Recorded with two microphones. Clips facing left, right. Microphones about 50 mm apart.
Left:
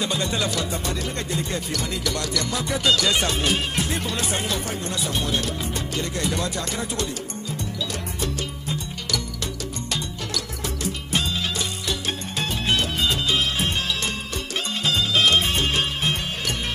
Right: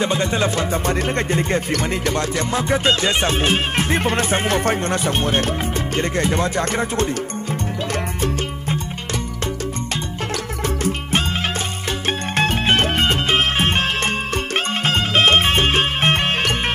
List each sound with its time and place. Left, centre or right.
0.0 s music: right
10.3 s music: right